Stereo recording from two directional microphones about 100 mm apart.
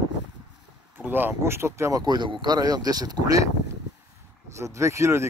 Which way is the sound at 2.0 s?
45° right (ahead or behind).